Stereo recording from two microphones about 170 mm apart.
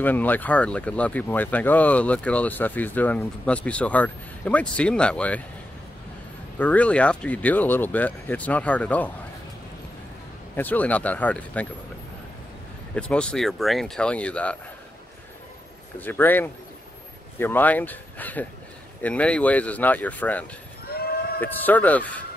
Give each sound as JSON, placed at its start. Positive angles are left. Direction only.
{"t": 0.0, "sound": "speech", "side_deg": 10}
{"t": 6.6, "sound": "speech", "side_deg": 10}
{"t": 10.5, "sound": "speech", "side_deg": 10}
{"t": 12.9, "sound": "speech", "side_deg": 5}
{"t": 16.0, "sound": "speech", "side_deg": 10}
{"t": 20.9, "sound": "a sound", "side_deg": 65}
{"t": 21.4, "sound": "speech", "side_deg": 10}